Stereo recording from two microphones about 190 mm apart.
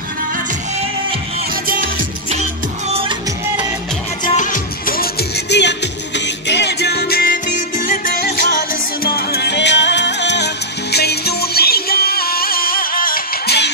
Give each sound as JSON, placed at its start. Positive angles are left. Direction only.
{"t": 1.5, "sound": "music", "side_deg": -40}
{"t": 2.9, "sound": "music", "side_deg": -30}
{"t": 4.4, "sound": "music", "side_deg": 45}